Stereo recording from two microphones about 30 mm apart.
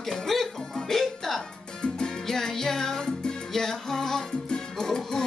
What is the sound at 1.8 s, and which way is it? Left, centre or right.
Salsa music, left.